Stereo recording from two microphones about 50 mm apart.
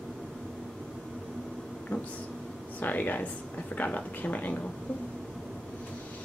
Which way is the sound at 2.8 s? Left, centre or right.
Left.